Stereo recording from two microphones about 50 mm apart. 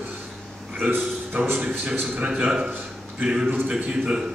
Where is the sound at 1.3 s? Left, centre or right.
Right.